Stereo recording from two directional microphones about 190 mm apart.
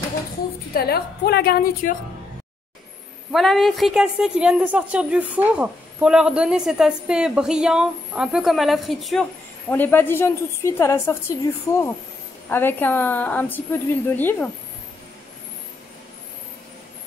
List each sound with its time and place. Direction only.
0.7 s a woman's voice: 55° left (ahead or behind)
3.3 s a woman's voice: centre (ahead or behind)
9.7 s a woman's voice: 10° left (ahead or behind)
12.4 s a woman's voice: 10° left (ahead or behind)